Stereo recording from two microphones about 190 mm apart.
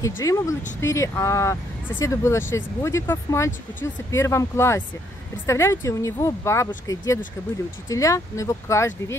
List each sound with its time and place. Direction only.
0.2 s speech: 15° left (ahead or behind)